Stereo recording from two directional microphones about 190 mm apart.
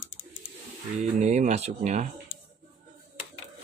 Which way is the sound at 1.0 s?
40° right (ahead or behind).